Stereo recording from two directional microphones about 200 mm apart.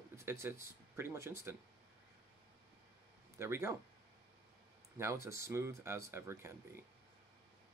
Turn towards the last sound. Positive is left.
turn(degrees=-10)  # may be behind; listen again after turning